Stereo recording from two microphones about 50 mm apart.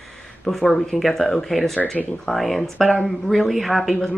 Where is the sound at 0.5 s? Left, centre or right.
Centre.